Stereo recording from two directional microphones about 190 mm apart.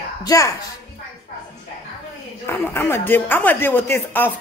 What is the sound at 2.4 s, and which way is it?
Speech, 15° left (ahead or behind).